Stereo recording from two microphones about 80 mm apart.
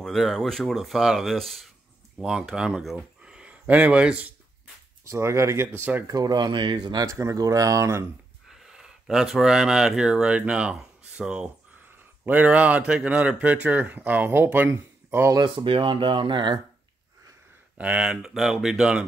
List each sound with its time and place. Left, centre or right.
0.0 s speech: centre
5.0 s speech: right
6.0 s speech: right
7.1 s speech: right
8.5 s speech: centre; by 15.3 s right
15.4 s speech: right
17.7 s speech: centre
18.3 s speech: centre